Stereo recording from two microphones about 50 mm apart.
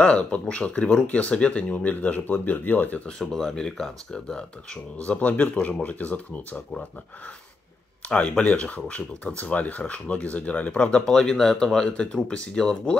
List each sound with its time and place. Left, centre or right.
0.0 s speech: left
3.2 s speech: centre
5.0 s speech: left
8.1 s speech: left
11.1 s speech: centre